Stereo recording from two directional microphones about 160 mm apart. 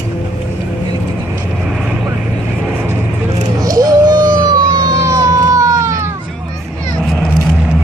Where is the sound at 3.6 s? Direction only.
20° right (ahead or behind).